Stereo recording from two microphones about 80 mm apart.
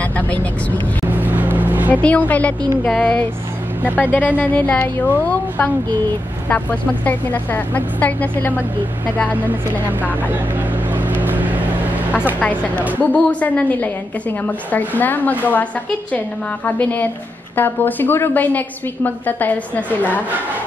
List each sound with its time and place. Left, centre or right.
0.0 s speech: centre
1.1 s vehicle: right
1.9 s a woman's voice: centre
11.0 s vehicle: right
12.9 s a woman's voice: centre
16.6 s a woman's voice: centre